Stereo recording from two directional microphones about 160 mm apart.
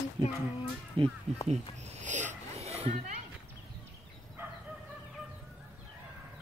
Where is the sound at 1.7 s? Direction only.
45° right (ahead or behind).